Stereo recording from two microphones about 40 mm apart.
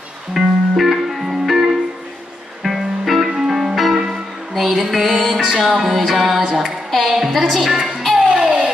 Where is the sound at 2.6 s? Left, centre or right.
Centre.